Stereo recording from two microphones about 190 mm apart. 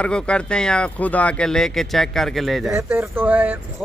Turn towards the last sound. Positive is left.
turn(degrees=-10)  # may be behind; listen again after turning